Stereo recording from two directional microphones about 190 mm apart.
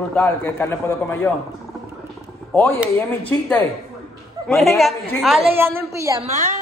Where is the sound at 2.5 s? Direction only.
15° left (ahead or behind).